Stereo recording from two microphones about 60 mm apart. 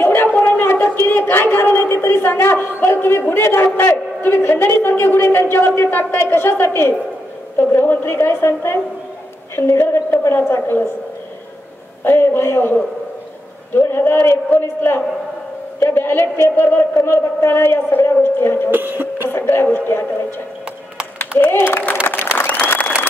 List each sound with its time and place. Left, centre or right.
0.0 s a sound: left
1.3 s a man's voice: left
12.0 s a man's voice: left
13.7 s a man's voice: left
18.7 s music: right
19.2 s a man's voice: left
21.4 s a man's voice: left
22.0 s applause: left